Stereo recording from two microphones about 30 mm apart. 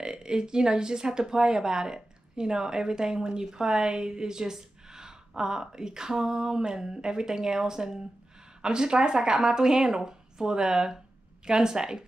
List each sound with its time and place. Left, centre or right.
0.0 s a woman's voice: right